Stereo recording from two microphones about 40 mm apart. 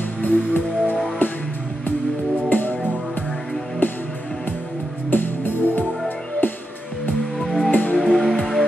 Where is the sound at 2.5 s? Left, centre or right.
Left.